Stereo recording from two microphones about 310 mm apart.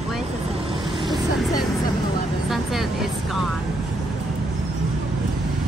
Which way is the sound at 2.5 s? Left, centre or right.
Centre.